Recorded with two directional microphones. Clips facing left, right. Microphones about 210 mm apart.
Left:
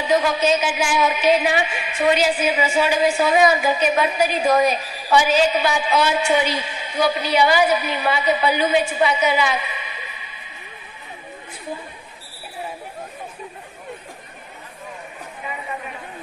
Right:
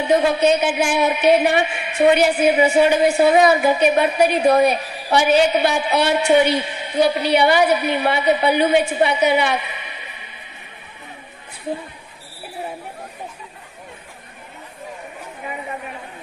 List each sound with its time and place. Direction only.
0.3 s a woman's voice: 60° right (ahead or behind)